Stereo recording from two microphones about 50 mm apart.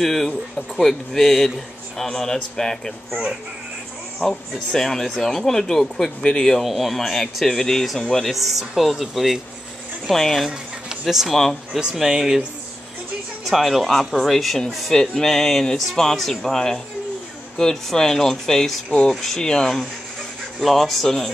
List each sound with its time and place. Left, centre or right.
0.0 s speech: centre
4.2 s speech: centre
6.6 s speech: centre
8.3 s speech: centre
10.9 s speech: centre
13.5 s speech: centre
18.9 s speech: centre
19.2 s speech: centre